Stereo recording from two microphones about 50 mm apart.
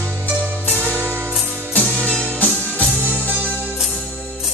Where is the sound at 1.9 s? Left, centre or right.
Centre.